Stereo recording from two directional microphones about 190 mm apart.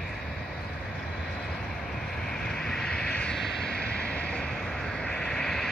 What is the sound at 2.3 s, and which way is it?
Vehicle, 5° left (ahead or behind).